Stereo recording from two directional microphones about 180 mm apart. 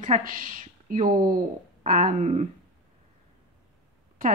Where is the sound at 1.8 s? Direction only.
45° right (ahead or behind).